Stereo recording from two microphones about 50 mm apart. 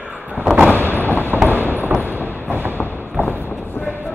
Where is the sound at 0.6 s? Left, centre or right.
Left.